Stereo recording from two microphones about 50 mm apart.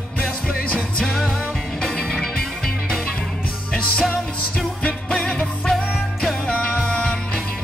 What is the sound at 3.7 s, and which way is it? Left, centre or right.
Music, centre.